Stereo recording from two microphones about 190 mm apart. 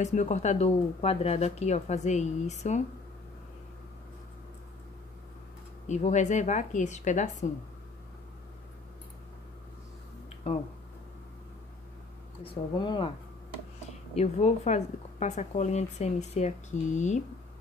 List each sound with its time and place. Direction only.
0.0 s a woman's voice: 40° left (ahead or behind)
5.9 s a woman's voice: 40° left (ahead or behind)
10.4 s a woman's voice: 30° left (ahead or behind)
12.4 s speech: 25° left (ahead or behind)
14.1 s a woman's voice: 35° left (ahead or behind)